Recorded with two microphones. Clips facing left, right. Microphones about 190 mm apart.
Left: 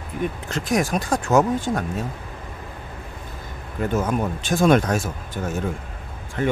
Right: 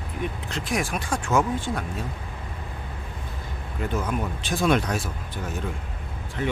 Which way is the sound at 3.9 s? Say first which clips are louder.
Left 5 dB; 45° left (ahead or behind).